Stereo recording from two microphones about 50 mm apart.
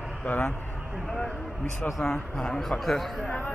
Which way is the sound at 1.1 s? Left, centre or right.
Centre.